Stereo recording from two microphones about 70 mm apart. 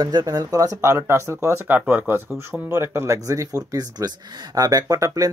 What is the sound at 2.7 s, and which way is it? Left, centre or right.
Speech, right.